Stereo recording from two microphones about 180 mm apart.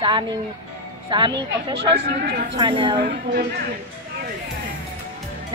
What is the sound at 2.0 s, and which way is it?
Speech, 60° right (ahead or behind).